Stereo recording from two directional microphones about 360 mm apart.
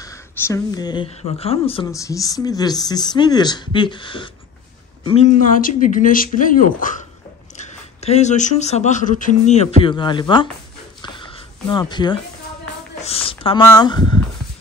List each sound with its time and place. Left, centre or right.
0.0 s speech: centre
11.0 s a sound: centre
13.0 s speech: centre